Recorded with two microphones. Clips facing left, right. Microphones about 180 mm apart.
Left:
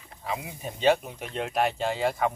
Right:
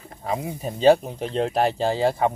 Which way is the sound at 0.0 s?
45° right (ahead or behind).